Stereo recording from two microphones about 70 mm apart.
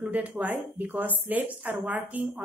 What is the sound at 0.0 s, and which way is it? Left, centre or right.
A woman's voice, right.